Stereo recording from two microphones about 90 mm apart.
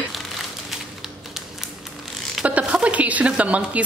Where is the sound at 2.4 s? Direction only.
15° right (ahead or behind).